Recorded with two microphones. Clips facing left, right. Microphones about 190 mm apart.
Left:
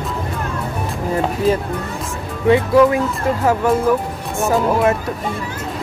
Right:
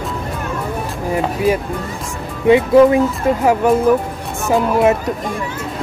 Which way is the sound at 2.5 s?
20° right (ahead or behind).